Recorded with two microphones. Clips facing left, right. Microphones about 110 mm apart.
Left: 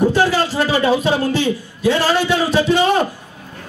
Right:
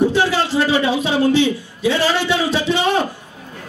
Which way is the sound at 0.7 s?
45° left (ahead or behind).